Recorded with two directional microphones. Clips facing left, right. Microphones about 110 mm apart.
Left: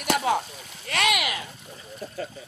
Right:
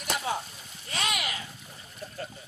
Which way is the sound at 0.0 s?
70° left (ahead or behind).